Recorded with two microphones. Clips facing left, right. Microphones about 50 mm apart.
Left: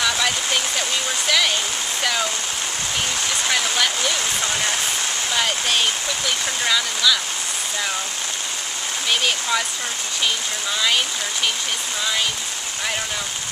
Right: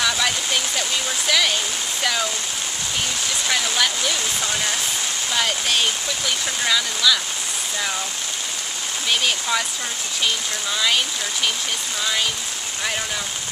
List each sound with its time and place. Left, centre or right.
0.0 s a sound: centre
3.4 s speech: centre
9.2 s speech: centre